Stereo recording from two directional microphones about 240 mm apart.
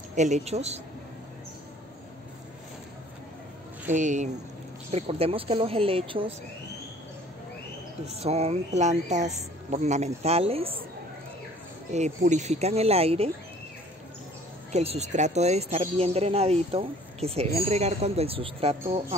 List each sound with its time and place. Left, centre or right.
0.1 s speech: right
3.9 s speech: right
8.1 s speech: right
11.9 s speech: right
14.7 s speech: right